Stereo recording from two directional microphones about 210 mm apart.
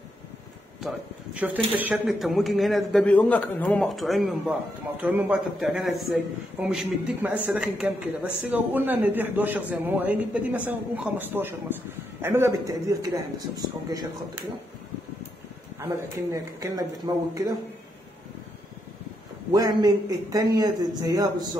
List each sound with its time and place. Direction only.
0.8 s a man's voice: 5° right (ahead or behind)
15.8 s a man's voice: 15° right (ahead or behind)
19.5 s a man's voice: 15° right (ahead or behind)